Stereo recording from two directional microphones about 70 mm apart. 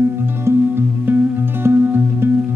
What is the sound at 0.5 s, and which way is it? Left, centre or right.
Music, right.